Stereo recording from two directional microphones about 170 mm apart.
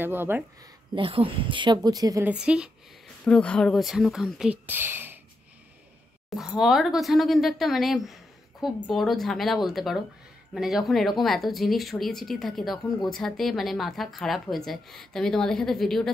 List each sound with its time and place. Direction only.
0.0 s speech: 15° right (ahead or behind)
0.9 s speech: 30° right (ahead or behind)
2.2 s speech: 5° right (ahead or behind)
3.3 s speech: 5° left (ahead or behind); by 5.2 s 15° right (ahead or behind)
6.3 s speech: 5° right (ahead or behind)